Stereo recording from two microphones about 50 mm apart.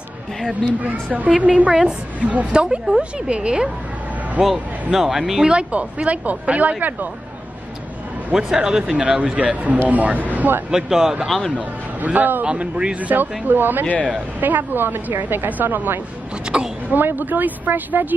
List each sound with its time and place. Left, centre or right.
0.7 s speech: right
4.9 s speech: centre
5.5 s speech: right
8.3 s speech: centre; by 10.6 s right
10.7 s speech: centre
11.2 s speech: centre
11.5 s a woman's voice: right
12.4 s speech: centre
13.1 s a woman's voice: right
16.5 s speech: right
16.9 s a woman's voice: right